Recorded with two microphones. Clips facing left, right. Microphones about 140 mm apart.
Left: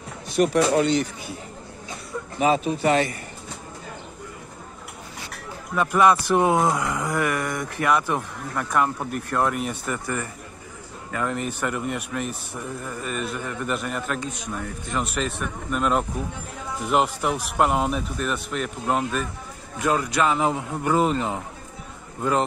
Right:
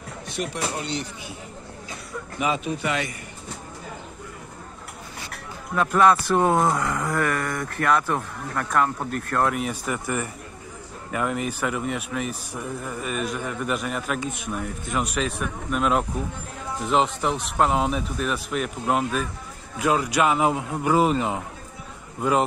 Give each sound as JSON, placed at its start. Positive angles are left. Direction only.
{"t": 0.4, "sound": "speech", "side_deg": 85}
{"t": 2.3, "sound": "speech", "side_deg": 35}
{"t": 5.8, "sound": "speech", "side_deg": 5}
{"t": 11.1, "sound": "a man's voice", "side_deg": -15}
{"t": 11.3, "sound": "a man's voice", "side_deg": -5}